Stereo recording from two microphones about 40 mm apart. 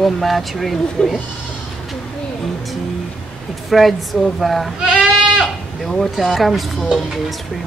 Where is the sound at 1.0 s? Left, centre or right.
Centre.